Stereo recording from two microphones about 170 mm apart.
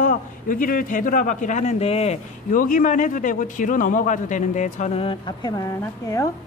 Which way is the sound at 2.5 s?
50° left (ahead or behind).